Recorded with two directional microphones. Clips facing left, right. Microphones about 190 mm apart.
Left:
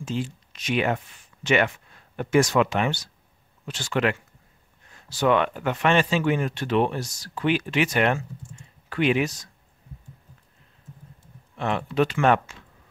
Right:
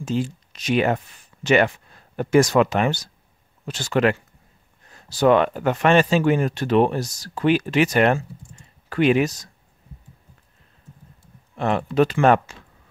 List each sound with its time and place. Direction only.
0.0 s speech: 40° right (ahead or behind)
11.5 s speech: 40° right (ahead or behind)